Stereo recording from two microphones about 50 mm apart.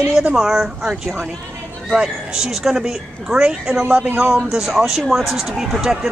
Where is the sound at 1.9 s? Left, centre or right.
Centre.